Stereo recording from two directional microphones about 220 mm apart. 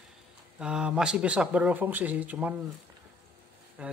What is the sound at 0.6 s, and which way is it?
Speech, 5° right (ahead or behind).